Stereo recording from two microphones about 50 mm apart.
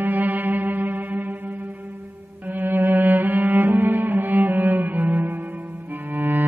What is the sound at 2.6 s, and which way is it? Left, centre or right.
Cello, right.